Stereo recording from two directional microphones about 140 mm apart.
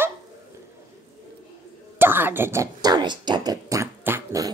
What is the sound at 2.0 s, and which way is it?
Speech, 15° right (ahead or behind).